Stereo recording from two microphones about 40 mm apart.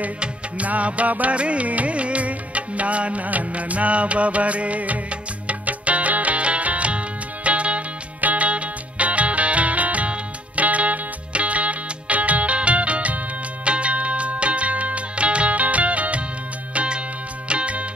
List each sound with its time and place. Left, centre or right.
0.2 s music: right